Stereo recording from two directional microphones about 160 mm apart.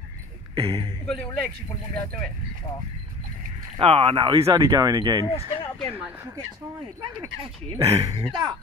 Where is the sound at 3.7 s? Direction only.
35° right (ahead or behind).